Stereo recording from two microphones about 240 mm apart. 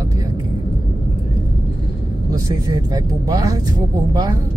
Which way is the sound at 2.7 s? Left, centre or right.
Centre.